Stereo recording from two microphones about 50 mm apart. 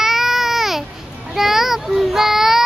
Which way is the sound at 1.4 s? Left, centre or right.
Centre.